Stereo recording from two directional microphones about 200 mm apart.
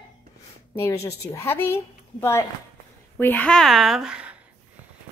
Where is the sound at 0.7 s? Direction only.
15° left (ahead or behind).